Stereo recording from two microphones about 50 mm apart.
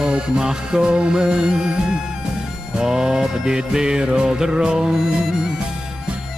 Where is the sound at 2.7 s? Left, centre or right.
Centre.